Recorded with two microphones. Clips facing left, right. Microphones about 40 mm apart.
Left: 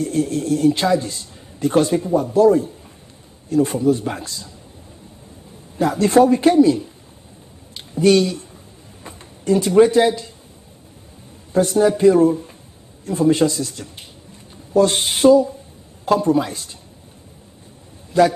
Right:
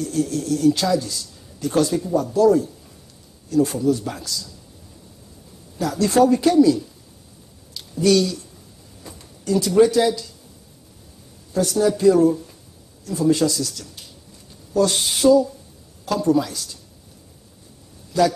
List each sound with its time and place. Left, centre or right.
0.0 s a man's voice: left
5.8 s a man's voice: left
7.7 s a sound: left
9.0 s speech: left
11.5 s a man's voice: left
18.1 s a man's voice: left